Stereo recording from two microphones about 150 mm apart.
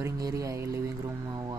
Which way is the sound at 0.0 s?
20° right (ahead or behind).